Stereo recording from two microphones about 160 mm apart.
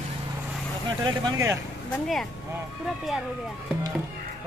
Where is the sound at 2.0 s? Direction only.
Centre (ahead or behind).